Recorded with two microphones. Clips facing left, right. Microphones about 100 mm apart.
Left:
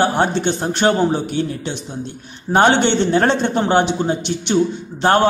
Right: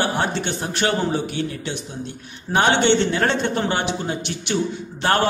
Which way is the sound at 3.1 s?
30° left (ahead or behind).